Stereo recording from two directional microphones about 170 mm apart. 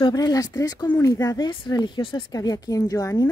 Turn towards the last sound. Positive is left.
turn(degrees=20)  # may be behind; listen again after turning